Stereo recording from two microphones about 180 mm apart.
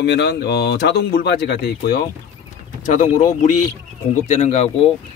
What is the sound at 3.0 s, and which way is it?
Speech, 45° left (ahead or behind).